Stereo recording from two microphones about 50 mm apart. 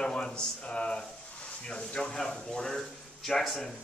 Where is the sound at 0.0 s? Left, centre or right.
Centre.